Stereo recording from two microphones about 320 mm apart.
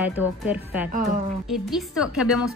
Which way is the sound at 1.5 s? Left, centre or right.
Centre.